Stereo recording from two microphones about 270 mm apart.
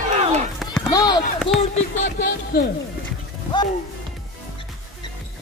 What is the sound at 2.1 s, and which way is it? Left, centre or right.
Speech, left.